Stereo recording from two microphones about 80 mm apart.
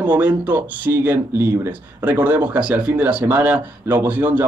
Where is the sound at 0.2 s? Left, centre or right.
Centre.